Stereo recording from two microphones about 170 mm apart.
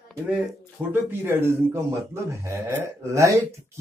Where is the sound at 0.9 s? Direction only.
15° right (ahead or behind).